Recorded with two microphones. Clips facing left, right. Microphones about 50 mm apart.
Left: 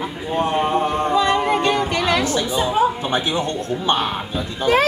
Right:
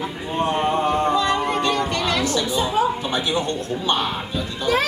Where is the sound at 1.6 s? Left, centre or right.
Centre.